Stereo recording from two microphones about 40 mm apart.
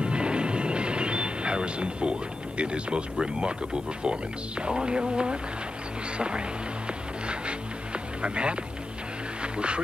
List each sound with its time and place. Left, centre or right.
0.0 s speech: right
7.2 s music: right
9.4 s a sound: right